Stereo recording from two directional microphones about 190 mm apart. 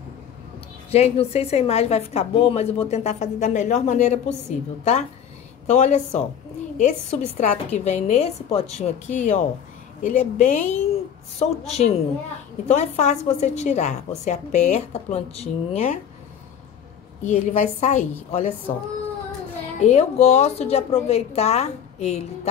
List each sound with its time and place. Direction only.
0.9 s a woman's voice: 35° left (ahead or behind)
10.0 s a woman's voice: 40° left (ahead or behind)
17.3 s a woman's voice: 35° left (ahead or behind)
19.8 s a woman's voice: 35° left (ahead or behind)